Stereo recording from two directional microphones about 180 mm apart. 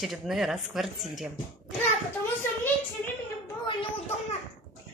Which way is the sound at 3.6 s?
30° left (ahead or behind).